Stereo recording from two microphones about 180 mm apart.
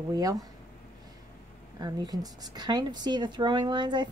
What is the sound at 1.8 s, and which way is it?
Speech, 20° right (ahead or behind).